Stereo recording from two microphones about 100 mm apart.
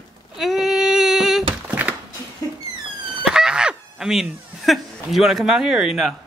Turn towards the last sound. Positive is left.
turn(degrees=-5)  # may be behind; listen again after turning